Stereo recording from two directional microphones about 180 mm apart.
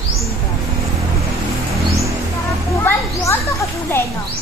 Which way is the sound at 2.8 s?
15° left (ahead or behind).